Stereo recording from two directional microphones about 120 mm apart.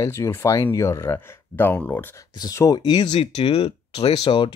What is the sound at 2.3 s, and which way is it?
Speech, 30° left (ahead or behind).